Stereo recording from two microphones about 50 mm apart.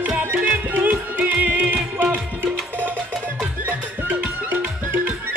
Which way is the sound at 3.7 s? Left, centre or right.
Right.